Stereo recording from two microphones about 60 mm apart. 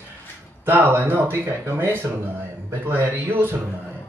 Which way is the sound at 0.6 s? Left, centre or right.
Right.